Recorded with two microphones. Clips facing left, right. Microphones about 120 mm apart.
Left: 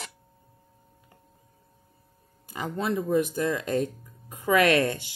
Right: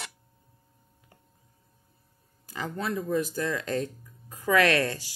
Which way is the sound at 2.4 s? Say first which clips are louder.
Left 3 dB; 20° left (ahead or behind).